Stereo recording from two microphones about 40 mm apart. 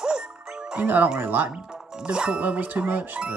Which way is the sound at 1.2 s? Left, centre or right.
Right.